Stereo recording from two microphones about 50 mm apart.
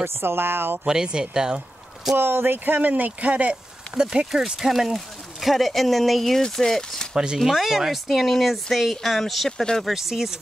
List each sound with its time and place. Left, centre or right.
0.0 s speech: right
0.8 s speech: centre
2.1 s speech: right
3.9 s speech: centre
4.6 s speech: centre
7.3 s speech: centre
9.9 s speech: centre